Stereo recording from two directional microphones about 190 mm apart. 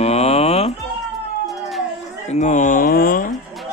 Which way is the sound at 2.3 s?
40° left (ahead or behind).